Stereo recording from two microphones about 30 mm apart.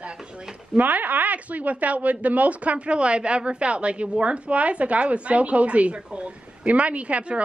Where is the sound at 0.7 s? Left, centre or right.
Right.